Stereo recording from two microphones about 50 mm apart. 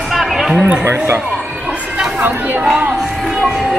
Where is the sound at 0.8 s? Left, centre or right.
Right.